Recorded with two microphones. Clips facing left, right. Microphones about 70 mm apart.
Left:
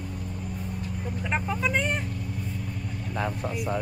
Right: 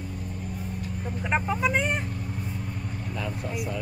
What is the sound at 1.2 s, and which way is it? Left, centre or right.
Speech, centre.